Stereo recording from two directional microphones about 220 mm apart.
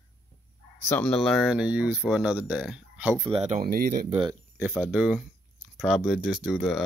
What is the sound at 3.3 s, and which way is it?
Speech, 30° right (ahead or behind).